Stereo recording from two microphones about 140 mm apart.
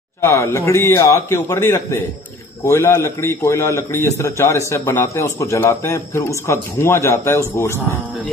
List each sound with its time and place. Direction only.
0.2 s a man's voice: 20° left (ahead or behind)